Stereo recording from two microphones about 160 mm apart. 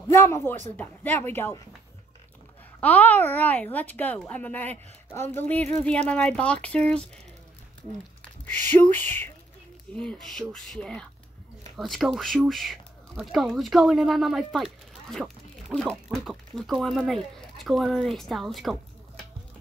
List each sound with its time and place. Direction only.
0.1 s a child's voice: 15° left (ahead or behind)
2.8 s a child's voice: 10° left (ahead or behind)
8.2 s a sound: 10° left (ahead or behind)
8.9 s a child's voice: 10° left (ahead or behind)